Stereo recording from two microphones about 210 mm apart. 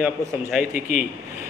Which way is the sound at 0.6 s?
40° left (ahead or behind).